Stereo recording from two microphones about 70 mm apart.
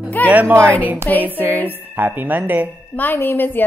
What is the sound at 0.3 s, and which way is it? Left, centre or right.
Speech, right.